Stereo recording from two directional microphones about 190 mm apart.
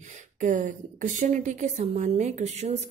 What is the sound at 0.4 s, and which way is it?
A woman's voice, 45° right (ahead or behind).